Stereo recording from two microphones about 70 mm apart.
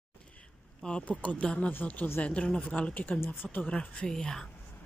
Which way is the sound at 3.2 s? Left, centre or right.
Left.